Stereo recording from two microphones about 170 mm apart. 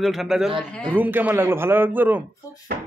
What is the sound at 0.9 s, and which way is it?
Speech, 10° right (ahead or behind).